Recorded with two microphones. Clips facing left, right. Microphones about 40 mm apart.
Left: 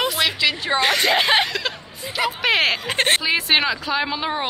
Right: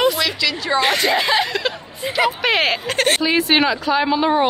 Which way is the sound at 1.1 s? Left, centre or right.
Left.